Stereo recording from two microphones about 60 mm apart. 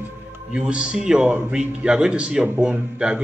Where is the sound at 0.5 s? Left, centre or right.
Centre.